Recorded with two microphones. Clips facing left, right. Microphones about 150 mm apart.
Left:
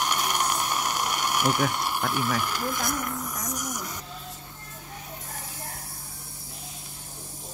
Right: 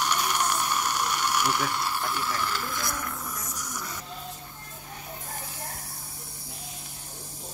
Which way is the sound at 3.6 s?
20° left (ahead or behind).